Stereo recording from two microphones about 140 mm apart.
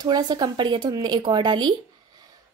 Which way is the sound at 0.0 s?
30° right (ahead or behind).